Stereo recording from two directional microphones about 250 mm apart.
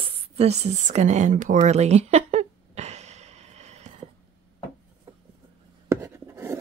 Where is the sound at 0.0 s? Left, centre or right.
Right.